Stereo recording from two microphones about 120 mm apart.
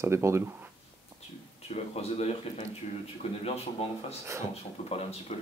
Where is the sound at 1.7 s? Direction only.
65° left (ahead or behind).